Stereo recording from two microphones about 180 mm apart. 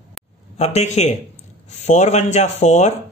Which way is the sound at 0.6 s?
35° left (ahead or behind).